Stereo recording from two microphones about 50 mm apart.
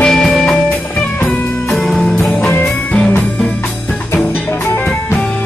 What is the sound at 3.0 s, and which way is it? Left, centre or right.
Music, left.